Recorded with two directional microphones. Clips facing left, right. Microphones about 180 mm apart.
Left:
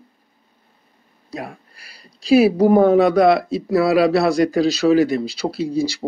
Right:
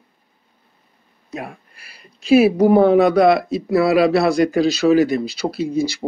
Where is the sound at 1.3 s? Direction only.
35° left (ahead or behind).